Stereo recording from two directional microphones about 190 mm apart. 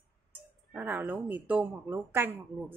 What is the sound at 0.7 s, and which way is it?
A woman's voice, 10° right (ahead or behind).